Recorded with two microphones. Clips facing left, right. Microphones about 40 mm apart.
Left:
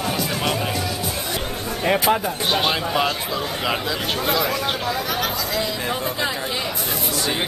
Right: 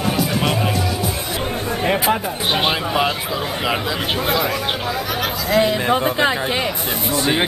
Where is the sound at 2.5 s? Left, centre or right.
Centre.